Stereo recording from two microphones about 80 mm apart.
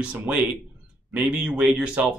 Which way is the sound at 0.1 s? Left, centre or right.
Centre.